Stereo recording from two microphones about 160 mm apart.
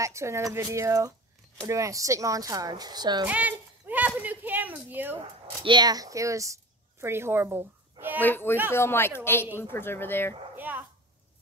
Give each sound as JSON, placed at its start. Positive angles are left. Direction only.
{"t": 0.0, "sound": "speech", "side_deg": -20}
{"t": 3.3, "sound": "speech", "side_deg": -10}
{"t": 5.6, "sound": "speech", "side_deg": -30}
{"t": 8.2, "sound": "a woman's voice", "side_deg": 10}
{"t": 10.5, "sound": "a sound", "side_deg": -10}